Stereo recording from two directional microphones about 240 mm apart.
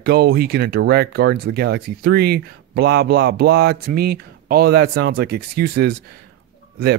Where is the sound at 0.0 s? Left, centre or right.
Right.